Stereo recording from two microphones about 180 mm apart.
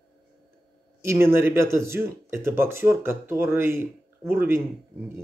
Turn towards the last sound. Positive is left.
turn(degrees=-10)  # may be behind; listen again after turning